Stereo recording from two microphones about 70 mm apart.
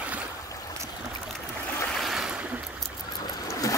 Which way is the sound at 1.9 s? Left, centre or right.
Centre.